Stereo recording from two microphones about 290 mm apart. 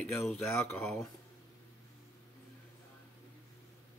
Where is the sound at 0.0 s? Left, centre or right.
Centre.